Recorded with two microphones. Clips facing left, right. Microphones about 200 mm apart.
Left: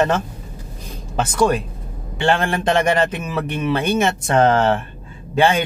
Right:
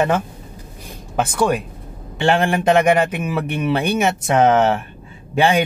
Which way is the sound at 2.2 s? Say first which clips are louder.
Right 2 dB; 20° right (ahead or behind).